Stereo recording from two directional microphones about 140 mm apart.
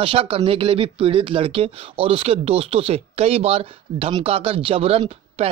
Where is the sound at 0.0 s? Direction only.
40° right (ahead or behind).